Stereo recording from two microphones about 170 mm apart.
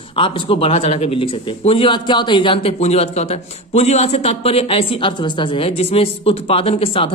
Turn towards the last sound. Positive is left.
turn(degrees=35)  # may be behind; listen again after turning